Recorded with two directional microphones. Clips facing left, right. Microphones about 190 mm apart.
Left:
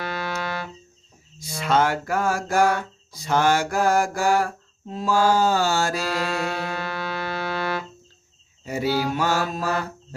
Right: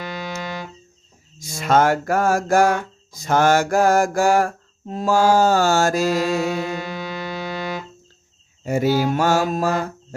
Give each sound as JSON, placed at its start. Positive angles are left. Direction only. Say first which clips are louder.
{"t": 0.0, "sound": "music", "louder": "even", "side_deg": -15}
{"t": 1.4, "sound": "music", "louder": "right 4 dB", "side_deg": -45}
{"t": 6.7, "sound": "music", "louder": "right 1 dB", "side_deg": -15}
{"t": 8.6, "sound": "music", "louder": "right 5 dB", "side_deg": -50}